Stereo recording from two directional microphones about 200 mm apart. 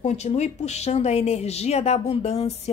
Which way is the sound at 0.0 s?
35° left (ahead or behind).